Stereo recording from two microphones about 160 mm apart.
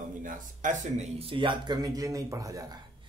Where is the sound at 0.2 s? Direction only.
55° right (ahead or behind); by 2.8 s 20° right (ahead or behind).